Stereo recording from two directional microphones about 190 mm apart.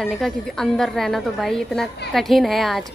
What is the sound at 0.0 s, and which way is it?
A woman's voice, centre (ahead or behind).